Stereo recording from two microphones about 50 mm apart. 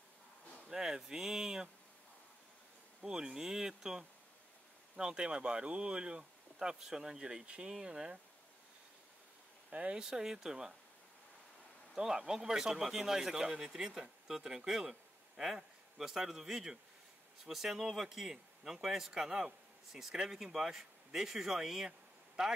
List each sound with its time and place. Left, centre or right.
0.7 s speech: centre
3.0 s speech: centre
9.7 s speech: right
9.9 s speech: centre
11.9 s speech: centre